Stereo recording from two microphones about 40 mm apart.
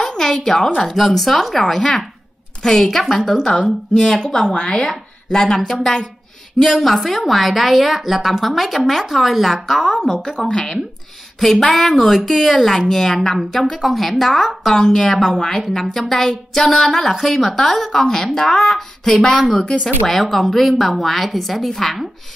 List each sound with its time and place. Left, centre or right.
0.0 s a sound: centre
0.7 s a woman's voice: centre
4.2 s a woman's voice: centre
10.2 s a woman's voice: centre